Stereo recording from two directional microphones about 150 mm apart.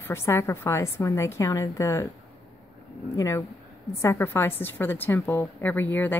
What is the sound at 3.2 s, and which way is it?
A woman's voice, 20° left (ahead or behind).